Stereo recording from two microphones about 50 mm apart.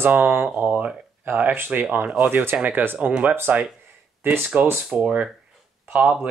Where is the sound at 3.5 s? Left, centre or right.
Right.